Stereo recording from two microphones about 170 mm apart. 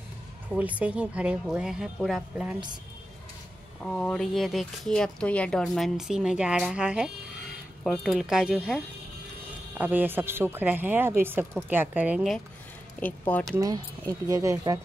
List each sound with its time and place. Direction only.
0.5 s speech: 10° right (ahead or behind)
3.8 s speech: 5° left (ahead or behind)
13.3 s speech: 10° left (ahead or behind)
13.6 s speech: 20° right (ahead or behind)